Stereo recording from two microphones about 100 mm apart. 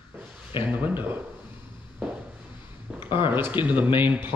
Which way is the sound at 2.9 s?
10° right (ahead or behind).